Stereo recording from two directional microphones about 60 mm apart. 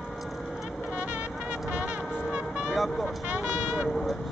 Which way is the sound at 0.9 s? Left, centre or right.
Right.